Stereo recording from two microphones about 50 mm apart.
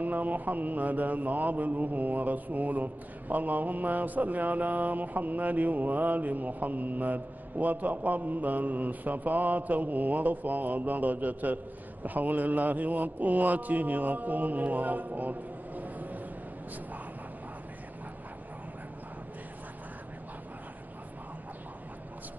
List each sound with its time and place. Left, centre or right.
0.0 s mantra: right